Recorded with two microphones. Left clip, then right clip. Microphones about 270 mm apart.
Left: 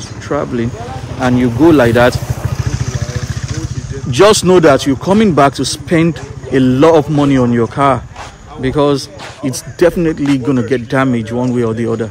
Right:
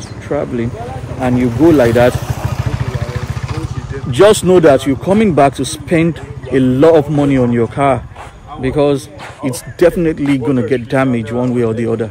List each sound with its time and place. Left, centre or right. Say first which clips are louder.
0.3 s a man's voice: left 1 dB; centre
2.1 s vehicle: right 1 dB; right
4.1 s a man's voice: even; centre